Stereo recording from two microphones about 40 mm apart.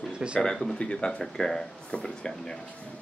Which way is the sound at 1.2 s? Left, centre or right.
Centre.